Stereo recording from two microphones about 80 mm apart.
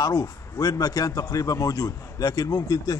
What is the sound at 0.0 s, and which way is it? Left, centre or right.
A man's voice, left.